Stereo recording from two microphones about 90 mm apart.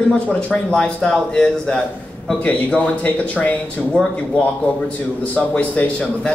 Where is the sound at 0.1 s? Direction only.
10° left (ahead or behind).